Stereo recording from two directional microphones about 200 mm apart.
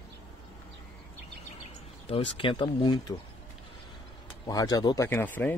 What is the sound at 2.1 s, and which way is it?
Speech, 25° left (ahead or behind).